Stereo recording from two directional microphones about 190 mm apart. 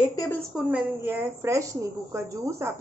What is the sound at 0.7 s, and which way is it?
Speech, 10° right (ahead or behind).